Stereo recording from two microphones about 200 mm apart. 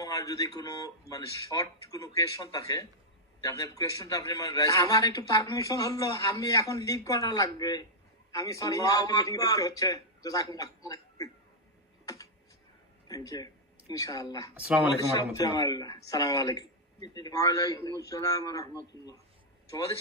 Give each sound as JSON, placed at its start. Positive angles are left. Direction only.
{"t": 0.0, "sound": "a man's voice", "side_deg": 15}
{"t": 13.1, "sound": "speech", "side_deg": 20}
{"t": 14.5, "sound": "speech", "side_deg": -5}
{"t": 15.4, "sound": "a man's voice", "side_deg": 20}